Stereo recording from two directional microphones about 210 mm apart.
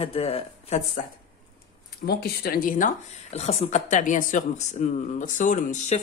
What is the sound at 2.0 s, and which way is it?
Speech, 50° left (ahead or behind).